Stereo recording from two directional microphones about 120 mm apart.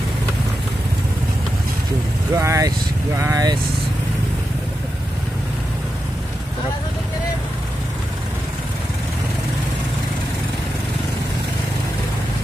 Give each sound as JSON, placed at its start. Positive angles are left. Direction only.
{"t": 2.3, "sound": "speech", "side_deg": -25}